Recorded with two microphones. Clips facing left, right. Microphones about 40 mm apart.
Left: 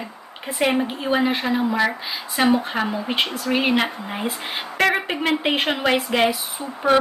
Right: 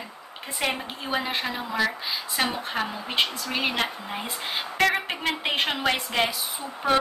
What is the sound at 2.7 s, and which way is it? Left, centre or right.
Speech, centre.